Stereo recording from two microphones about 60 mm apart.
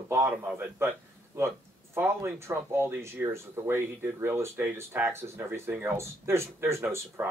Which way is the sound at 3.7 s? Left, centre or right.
Right.